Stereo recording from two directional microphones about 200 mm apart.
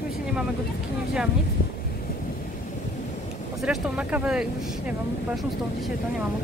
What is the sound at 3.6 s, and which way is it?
Speech, 5° right (ahead or behind).